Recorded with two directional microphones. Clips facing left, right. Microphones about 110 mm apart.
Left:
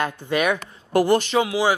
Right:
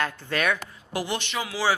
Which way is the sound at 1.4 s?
15° left (ahead or behind).